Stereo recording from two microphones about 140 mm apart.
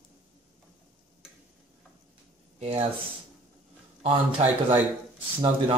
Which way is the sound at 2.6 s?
50° right (ahead or behind).